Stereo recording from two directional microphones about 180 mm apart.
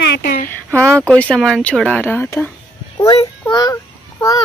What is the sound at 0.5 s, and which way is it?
Speech, 5° left (ahead or behind).